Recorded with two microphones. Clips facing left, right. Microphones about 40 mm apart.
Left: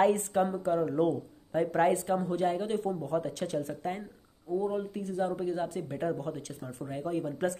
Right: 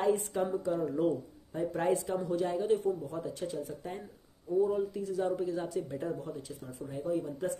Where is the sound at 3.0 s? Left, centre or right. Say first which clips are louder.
Left 5 dB; left.